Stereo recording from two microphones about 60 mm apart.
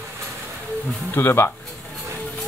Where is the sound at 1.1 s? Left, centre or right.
Left.